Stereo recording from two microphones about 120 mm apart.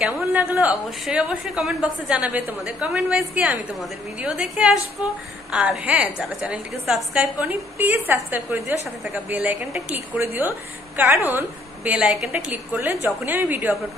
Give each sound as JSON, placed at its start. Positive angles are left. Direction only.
{"t": 0.0, "sound": "a woman's voice", "side_deg": -15}
{"t": 10.1, "sound": "a woman's voice", "side_deg": -15}